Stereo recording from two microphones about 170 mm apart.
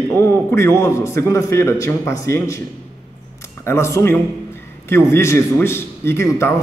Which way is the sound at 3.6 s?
15° left (ahead or behind).